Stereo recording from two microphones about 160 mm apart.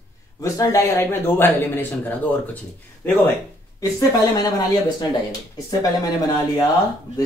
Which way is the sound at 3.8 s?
25° left (ahead or behind).